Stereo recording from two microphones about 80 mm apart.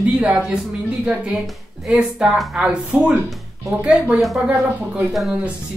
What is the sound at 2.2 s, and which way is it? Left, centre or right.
Speech, centre.